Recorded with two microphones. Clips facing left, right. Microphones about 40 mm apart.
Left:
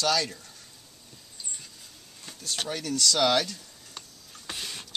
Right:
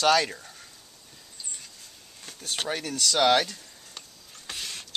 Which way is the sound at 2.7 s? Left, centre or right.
Right.